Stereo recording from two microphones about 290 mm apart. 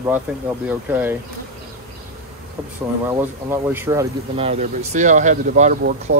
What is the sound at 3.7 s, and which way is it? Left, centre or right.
Speech, centre.